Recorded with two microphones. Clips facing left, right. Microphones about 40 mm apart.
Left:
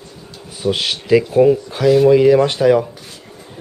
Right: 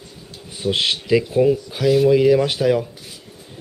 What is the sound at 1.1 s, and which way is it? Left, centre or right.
Speech, centre.